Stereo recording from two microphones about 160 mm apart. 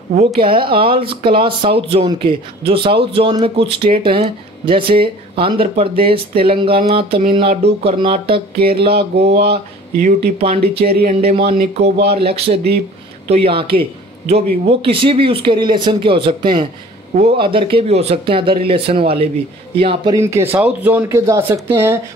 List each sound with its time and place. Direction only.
0.1 s speech: 40° right (ahead or behind)
8.5 s a sound: 75° right (ahead or behind)
10.0 s speech: 40° right (ahead or behind)
20.2 s speech: 20° right (ahead or behind)